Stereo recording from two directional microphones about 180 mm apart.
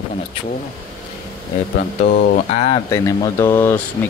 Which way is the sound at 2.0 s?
55° left (ahead or behind).